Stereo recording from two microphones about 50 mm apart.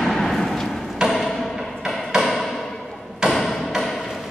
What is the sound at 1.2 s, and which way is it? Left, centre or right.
Music, centre.